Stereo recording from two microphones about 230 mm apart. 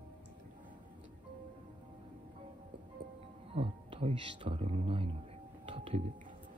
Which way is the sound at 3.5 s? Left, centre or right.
Right.